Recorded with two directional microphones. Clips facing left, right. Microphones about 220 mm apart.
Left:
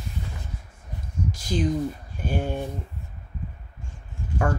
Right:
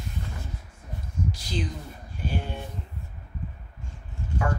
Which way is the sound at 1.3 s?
45° left (ahead or behind).